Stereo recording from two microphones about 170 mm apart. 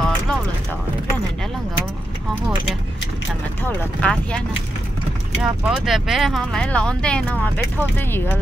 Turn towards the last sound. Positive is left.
turn(degrees=5)  # may be behind; listen again after turning